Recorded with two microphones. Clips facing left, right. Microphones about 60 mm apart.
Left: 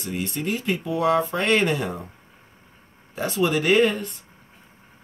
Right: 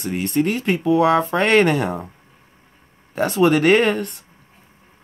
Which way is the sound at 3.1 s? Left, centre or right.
Right.